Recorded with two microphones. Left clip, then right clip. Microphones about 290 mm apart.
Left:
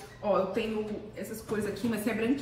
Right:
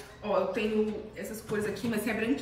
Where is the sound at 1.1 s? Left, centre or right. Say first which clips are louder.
Right 1 dB; centre.